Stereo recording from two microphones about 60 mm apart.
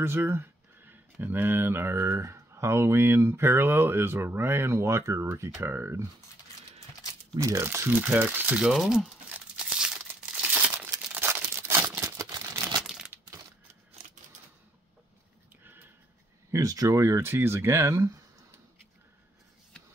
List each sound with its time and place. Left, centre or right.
0.0 s a sound: right
1.2 s speech: right
7.3 s speech: right
7.6 s speech: right
7.9 s speech: right
8.7 s speech: centre
9.6 s crumpling: centre
11.1 s crumpling: right
12.0 s a sound: right
13.1 s a sound: right
15.6 s a sound: right
16.5 s speech: right
17.9 s speech: right